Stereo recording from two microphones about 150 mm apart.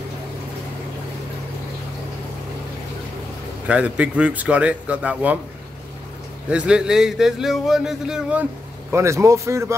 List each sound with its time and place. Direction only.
3.6 s a man's voice: 10° right (ahead or behind)
6.5 s speech: 5° right (ahead or behind)
8.9 s speech: 20° right (ahead or behind)